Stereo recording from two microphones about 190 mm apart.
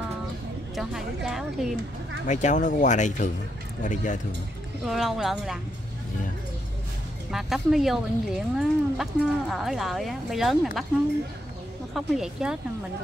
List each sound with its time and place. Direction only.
0.7 s speech: centre (ahead or behind)
2.2 s speech: 40° left (ahead or behind)
4.8 s speech: centre (ahead or behind)
7.2 s speech: centre (ahead or behind)
11.9 s speech: centre (ahead or behind)